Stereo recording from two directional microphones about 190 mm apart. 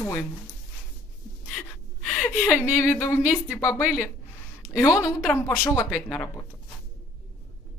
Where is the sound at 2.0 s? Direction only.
5° left (ahead or behind).